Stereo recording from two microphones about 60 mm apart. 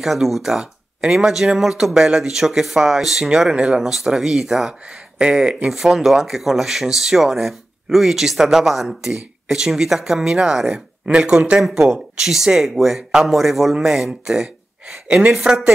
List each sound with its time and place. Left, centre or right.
0.0 s speech: centre